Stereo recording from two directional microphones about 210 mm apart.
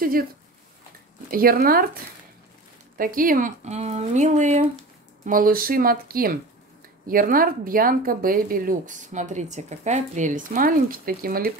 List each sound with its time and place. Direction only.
0.0 s speech: 45° right (ahead or behind)
1.3 s speech: 45° right (ahead or behind)
3.0 s speech: 40° right (ahead or behind)